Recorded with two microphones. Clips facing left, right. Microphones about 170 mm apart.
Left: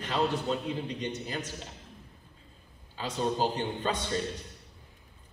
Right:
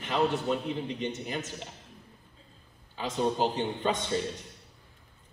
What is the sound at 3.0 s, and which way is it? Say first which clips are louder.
A man's voice: right 2 dB; 15° right (ahead or behind).